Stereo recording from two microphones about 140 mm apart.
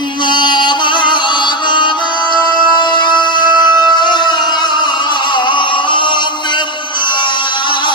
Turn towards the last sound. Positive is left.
turn(degrees=35)  # may be behind; listen again after turning